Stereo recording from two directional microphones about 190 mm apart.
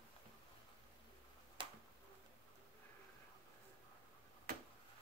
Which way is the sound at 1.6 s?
25° right (ahead or behind).